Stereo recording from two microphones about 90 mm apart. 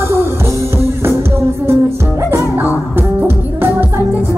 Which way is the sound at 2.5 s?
20° right (ahead or behind).